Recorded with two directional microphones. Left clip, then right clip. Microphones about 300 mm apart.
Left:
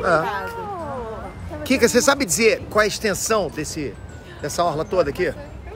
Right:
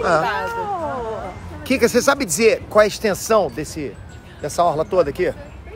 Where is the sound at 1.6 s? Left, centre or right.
Centre.